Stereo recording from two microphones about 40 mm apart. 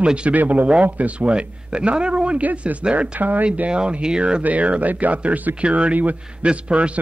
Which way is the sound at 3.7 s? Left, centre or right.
Right.